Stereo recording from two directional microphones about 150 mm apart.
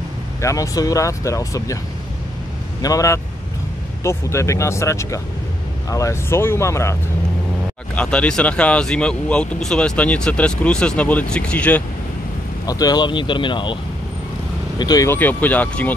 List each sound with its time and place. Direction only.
0.4 s speech: 20° left (ahead or behind)
2.8 s speech: 20° left (ahead or behind)
7.9 s speech: 10° left (ahead or behind)
12.6 s speech: 25° left (ahead or behind)
14.8 s speech: 25° left (ahead or behind)
15.0 s speech: 10° left (ahead or behind)